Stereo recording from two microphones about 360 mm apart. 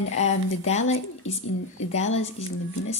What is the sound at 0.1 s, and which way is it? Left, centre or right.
Speech, centre.